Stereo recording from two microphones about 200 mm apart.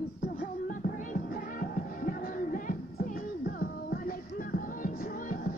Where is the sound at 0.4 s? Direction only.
45° left (ahead or behind).